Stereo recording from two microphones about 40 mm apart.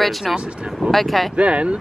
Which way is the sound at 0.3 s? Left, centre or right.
Centre.